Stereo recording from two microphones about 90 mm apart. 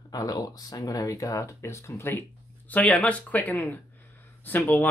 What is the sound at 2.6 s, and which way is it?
Speech, 15° left (ahead or behind).